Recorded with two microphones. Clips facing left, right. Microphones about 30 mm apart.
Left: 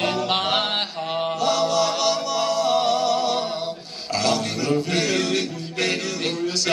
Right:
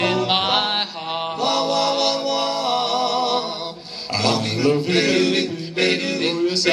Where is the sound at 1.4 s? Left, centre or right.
Right.